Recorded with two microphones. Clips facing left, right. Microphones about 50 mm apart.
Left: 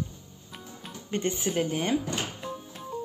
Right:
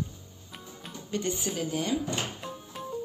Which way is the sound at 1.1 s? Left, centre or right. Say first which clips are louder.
Left 2 dB; left.